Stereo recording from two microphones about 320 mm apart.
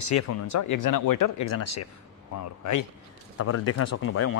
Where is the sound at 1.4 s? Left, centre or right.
Left.